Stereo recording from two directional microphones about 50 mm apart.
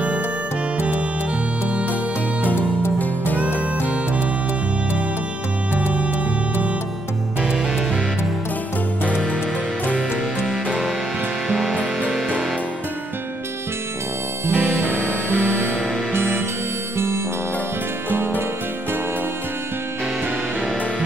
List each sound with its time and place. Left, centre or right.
0.7 s music: right
2.4 s music: left
10.4 s music: centre
14.8 s music: right